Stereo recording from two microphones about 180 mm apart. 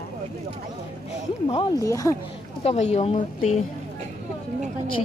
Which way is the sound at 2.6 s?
35° left (ahead or behind).